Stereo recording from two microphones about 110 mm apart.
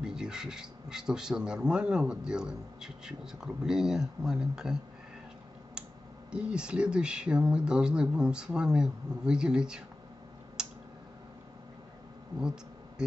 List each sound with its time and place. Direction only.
0.0 s speech: 5° right (ahead or behind)
6.3 s speech: 10° right (ahead or behind)
10.6 s tick-tock: 5° right (ahead or behind)
12.4 s insect: 5° right (ahead or behind)